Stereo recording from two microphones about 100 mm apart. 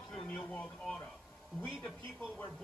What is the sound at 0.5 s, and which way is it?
Speech, 10° left (ahead or behind).